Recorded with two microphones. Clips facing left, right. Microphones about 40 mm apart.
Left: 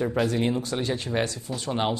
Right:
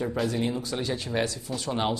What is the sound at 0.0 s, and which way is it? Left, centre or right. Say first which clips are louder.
Speech: left 3 dB; centre.